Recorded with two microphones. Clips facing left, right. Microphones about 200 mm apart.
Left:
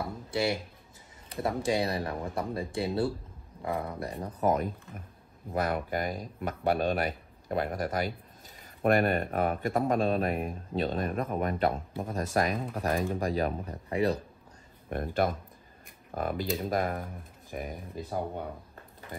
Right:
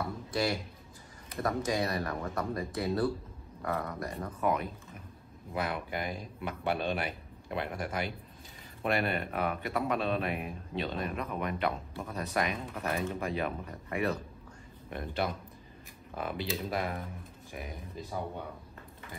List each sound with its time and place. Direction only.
0.3 s speech: 25° left (ahead or behind)
4.2 s speech: 40° left (ahead or behind)
14.9 s speech: 50° left (ahead or behind)